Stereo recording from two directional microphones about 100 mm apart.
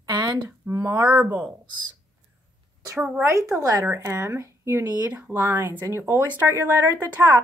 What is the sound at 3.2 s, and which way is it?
A woman's voice, 30° right (ahead or behind).